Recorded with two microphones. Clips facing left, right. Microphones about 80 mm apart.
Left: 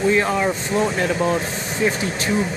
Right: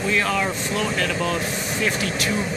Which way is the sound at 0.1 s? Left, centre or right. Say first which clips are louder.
Left 4 dB; left.